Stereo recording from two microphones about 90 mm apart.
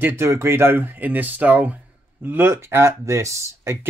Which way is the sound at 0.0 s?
30° right (ahead or behind).